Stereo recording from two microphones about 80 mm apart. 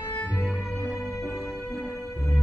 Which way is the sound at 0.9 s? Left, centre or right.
Centre.